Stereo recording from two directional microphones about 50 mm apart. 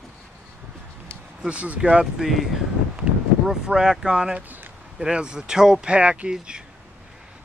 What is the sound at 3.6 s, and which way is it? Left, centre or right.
Speech, centre.